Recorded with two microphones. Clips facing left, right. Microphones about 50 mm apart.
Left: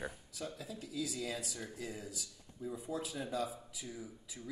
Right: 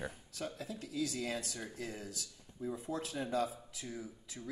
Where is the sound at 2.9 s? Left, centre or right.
Right.